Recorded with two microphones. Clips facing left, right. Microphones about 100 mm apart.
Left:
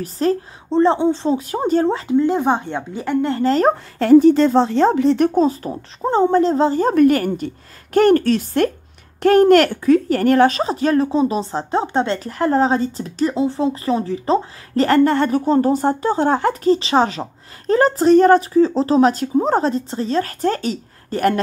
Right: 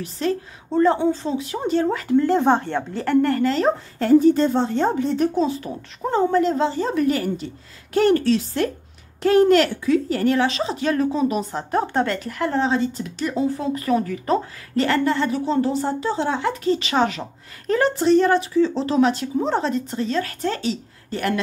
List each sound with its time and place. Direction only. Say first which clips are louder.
0.0 s a woman's voice: left 5 dB; 40° left (ahead or behind)
0.7 s speech: left 3 dB; 25° left (ahead or behind)
1.4 s speech: left 4 dB; 45° left (ahead or behind)
1.9 s speech: left 3 dB; 25° left (ahead or behind)
2.1 s speech: right 1 dB; 10° left (ahead or behind)
3.4 s speech: left 4 dB; 45° left (ahead or behind)
4.0 s a woman's voice: left 4 dB; 90° left
5.3 s a woman's voice: left 5 dB; 40° left (ahead or behind); by 12.2 s 25° left (ahead or behind)
12.2 s a woman's voice: left 5 dB; 35° left (ahead or behind)
14.8 s speech: left 5 dB; 45° left (ahead or behind)